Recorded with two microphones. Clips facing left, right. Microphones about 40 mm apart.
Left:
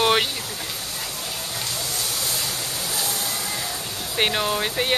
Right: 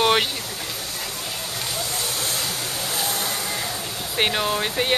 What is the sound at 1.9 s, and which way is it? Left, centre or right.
Vehicle, right.